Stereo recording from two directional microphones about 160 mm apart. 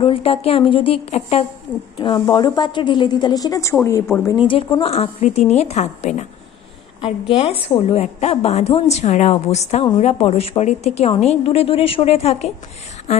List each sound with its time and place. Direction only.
0.0 s a woman's voice: 35° left (ahead or behind)
2.0 s a woman's voice: 25° left (ahead or behind)
4.8 s a woman's voice: 40° left (ahead or behind)